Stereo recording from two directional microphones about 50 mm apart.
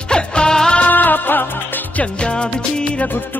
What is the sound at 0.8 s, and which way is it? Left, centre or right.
Music, left.